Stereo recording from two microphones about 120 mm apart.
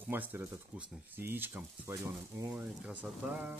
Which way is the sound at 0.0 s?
15° right (ahead or behind).